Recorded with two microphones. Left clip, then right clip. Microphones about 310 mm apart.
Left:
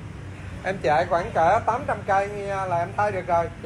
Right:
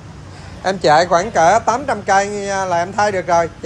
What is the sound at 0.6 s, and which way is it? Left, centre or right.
Speech, right.